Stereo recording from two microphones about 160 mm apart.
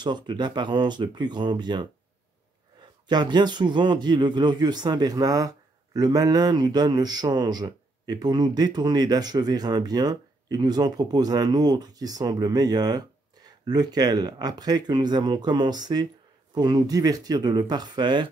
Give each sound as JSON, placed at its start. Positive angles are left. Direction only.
{"t": 0.0, "sound": "speech", "side_deg": -25}
{"t": 3.1, "sound": "speech", "side_deg": -25}